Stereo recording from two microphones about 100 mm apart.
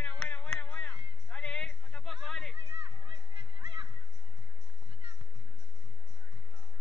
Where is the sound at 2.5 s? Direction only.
60° right (ahead or behind).